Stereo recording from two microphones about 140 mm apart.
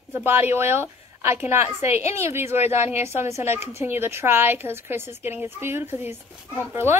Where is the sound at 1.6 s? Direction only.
50° left (ahead or behind).